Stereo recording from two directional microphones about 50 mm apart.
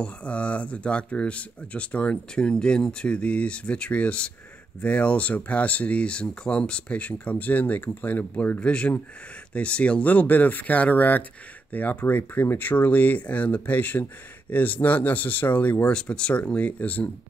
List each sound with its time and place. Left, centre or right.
0.0 s speech: left
8.5 s speech: left
15.9 s speech: centre